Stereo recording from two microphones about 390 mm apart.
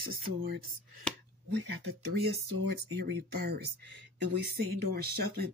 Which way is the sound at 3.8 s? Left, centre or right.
Right.